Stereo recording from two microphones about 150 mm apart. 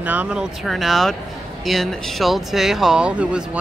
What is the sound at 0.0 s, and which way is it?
Speech, 10° right (ahead or behind).